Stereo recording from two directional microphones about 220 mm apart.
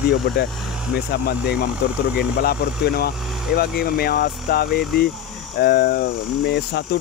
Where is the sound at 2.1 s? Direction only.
45° left (ahead or behind).